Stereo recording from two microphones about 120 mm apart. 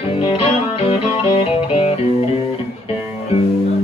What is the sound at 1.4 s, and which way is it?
Music, 50° left (ahead or behind).